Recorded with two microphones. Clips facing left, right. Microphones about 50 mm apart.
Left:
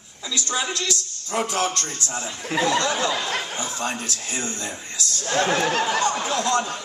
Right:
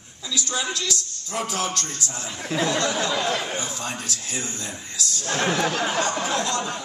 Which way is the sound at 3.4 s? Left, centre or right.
Right.